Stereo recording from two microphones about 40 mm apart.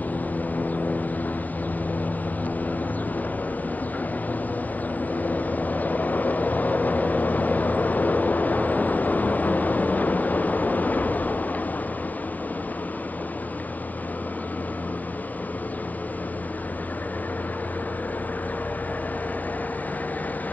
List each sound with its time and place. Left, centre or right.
5.2 s vehicle: left